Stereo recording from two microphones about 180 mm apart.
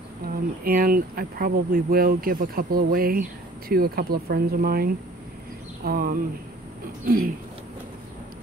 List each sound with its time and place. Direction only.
0.3 s speech: 50° right (ahead or behind)